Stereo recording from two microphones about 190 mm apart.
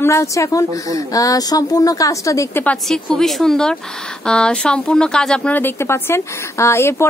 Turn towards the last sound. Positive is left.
turn(degrees=15)  # may be behind; listen again after turning